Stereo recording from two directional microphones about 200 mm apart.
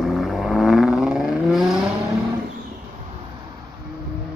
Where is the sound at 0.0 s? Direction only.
Centre (ahead or behind).